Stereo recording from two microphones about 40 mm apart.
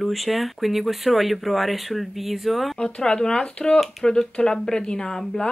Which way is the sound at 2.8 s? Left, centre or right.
Centre.